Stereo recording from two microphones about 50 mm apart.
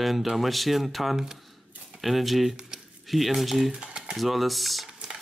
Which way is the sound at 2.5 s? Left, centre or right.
Centre.